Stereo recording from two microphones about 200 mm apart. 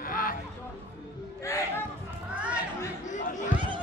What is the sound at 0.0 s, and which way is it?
Music, 45° left (ahead or behind).